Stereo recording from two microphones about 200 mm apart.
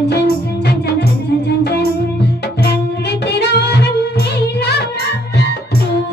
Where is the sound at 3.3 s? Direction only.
55° left (ahead or behind).